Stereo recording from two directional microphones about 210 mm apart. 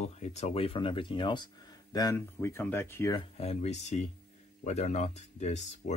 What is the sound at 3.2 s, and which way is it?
Speech, 30° left (ahead or behind).